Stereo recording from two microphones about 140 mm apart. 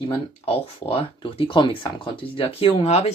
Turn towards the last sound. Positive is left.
turn(degrees=50)  # may be behind; listen again after turning